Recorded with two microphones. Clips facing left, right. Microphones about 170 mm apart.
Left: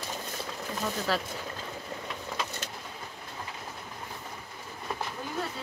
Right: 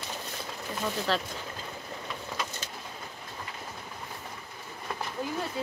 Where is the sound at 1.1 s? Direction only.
5° left (ahead or behind).